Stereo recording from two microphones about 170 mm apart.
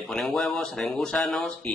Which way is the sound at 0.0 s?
Centre (ahead or behind).